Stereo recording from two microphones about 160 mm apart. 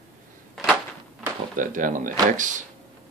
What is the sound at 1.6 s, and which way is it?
Speech, 55° right (ahead or behind).